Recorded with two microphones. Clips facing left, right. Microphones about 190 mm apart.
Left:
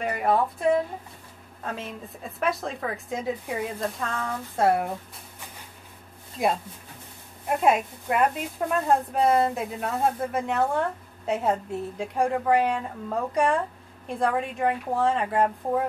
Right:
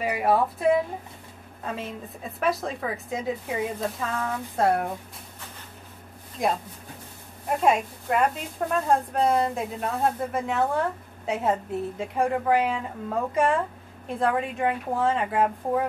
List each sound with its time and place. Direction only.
0.0 s speech: 5° right (ahead or behind)
6.4 s speech: 5° left (ahead or behind)